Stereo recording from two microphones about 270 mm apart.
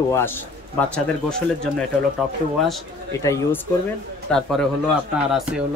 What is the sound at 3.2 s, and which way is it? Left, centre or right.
Speech, centre.